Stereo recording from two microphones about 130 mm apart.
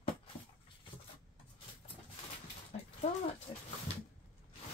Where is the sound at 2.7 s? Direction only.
60° left (ahead or behind).